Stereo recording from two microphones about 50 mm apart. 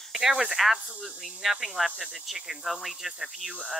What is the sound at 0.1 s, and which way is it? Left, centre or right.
Speech, centre.